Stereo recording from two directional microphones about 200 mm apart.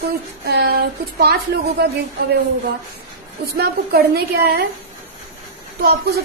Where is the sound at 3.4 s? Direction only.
50° right (ahead or behind).